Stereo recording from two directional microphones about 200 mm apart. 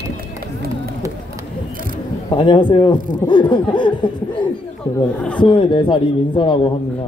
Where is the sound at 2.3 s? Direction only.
25° left (ahead or behind).